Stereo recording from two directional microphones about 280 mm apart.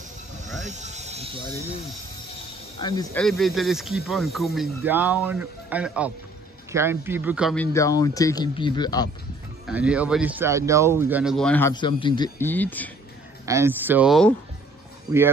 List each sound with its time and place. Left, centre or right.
0.7 s snake: right
2.8 s speech: centre
3.2 s speech: centre
9.7 s speech: centre
13.5 s speech: centre